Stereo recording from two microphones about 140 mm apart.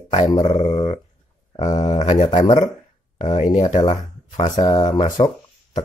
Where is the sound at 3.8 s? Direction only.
30° left (ahead or behind).